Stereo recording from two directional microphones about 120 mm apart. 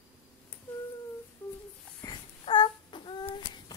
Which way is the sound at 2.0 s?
40° left (ahead or behind).